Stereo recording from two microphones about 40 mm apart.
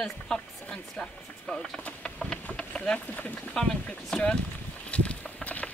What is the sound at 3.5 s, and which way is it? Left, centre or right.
Speech, centre.